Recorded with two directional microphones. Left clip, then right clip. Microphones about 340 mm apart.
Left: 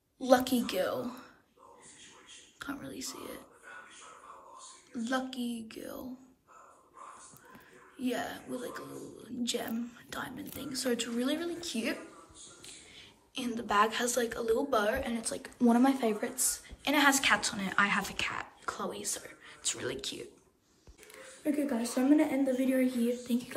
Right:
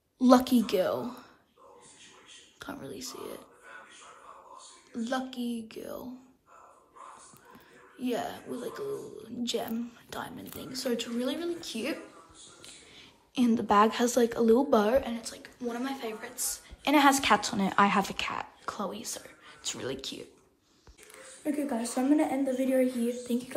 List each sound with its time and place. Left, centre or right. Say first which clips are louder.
0.2 s speech: right 4 dB; centre
2.6 s speech: even; centre
4.9 s speech: right 1 dB; centre
8.0 s a woman's voice: right 2 dB; centre
15.1 s a woman's voice: left 5 dB; centre
16.3 s speech: left 2 dB; centre
21.1 s a woman's voice: even; centre